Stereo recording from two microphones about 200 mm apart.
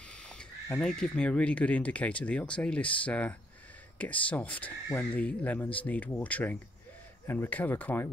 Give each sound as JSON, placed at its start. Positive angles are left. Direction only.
{"t": 0.0, "sound": "speech", "side_deg": 5}